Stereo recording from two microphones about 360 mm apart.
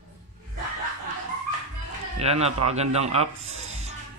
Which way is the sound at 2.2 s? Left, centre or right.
Centre.